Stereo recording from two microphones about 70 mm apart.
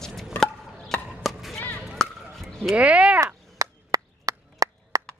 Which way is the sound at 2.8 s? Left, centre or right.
Centre.